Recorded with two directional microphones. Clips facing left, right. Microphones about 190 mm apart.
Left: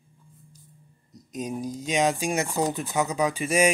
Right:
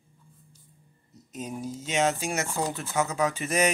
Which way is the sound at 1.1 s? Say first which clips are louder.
Left 4 dB; 15° left (ahead or behind).